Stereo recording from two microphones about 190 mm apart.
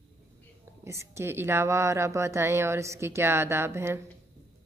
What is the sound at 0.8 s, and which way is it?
Speech, 15° right (ahead or behind).